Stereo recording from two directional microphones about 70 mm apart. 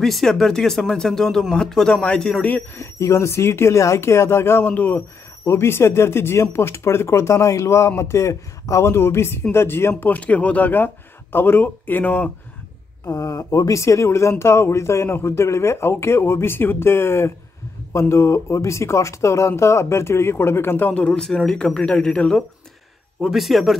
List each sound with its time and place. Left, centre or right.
0.0 s a man's voice: centre
3.0 s speech: left
4.7 s speech: left
5.4 s speech: left
13.0 s speech: left
20.9 s a man's voice: centre
23.3 s speech: centre